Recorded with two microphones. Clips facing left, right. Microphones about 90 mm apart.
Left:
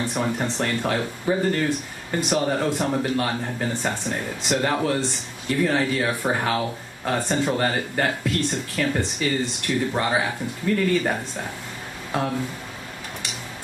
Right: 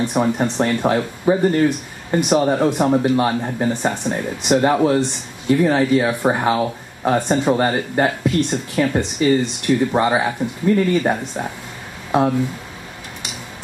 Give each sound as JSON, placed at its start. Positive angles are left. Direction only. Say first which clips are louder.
{"t": 0.0, "sound": "speech", "louder": "right 6 dB", "side_deg": -20}